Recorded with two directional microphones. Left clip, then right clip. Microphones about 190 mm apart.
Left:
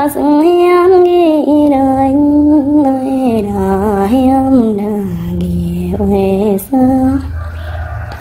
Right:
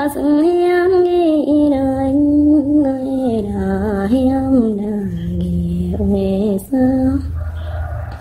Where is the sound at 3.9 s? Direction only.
15° right (ahead or behind).